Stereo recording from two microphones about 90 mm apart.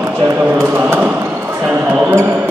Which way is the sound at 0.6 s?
25° right (ahead or behind).